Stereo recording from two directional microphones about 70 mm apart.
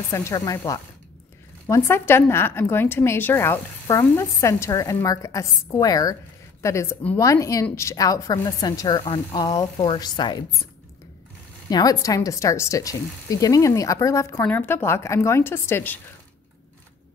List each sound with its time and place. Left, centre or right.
0.1 s speech: left
1.7 s a woman's voice: left
6.6 s a woman's voice: left
11.7 s speech: left
14.4 s a woman's voice: left